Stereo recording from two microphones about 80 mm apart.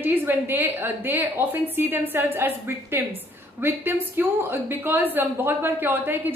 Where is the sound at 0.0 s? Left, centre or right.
Right.